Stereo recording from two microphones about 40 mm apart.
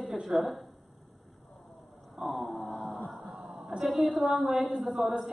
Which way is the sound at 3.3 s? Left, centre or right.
Centre.